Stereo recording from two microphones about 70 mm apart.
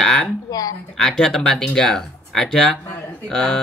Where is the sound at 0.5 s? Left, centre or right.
Left.